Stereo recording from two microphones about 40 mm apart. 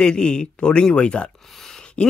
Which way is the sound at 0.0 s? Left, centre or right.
Left.